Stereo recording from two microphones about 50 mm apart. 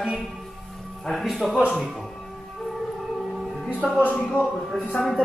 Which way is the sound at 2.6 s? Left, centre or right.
Centre.